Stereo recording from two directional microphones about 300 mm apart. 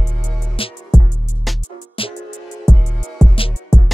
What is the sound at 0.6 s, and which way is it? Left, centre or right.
Music, centre.